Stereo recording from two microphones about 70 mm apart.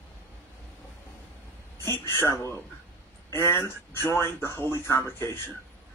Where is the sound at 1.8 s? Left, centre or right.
Left.